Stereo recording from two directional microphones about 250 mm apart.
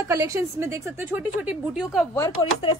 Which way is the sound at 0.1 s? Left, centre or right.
Centre.